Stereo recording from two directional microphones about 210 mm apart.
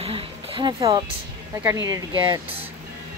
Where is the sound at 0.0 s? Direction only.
25° right (ahead or behind).